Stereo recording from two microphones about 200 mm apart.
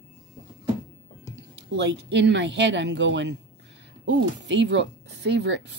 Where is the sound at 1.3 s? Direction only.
65° right (ahead or behind).